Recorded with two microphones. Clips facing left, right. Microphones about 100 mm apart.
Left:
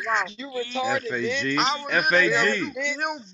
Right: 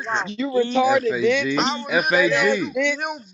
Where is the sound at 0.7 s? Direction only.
70° right (ahead or behind).